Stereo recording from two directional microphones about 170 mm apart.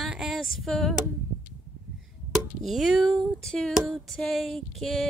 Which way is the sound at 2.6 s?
Centre (ahead or behind).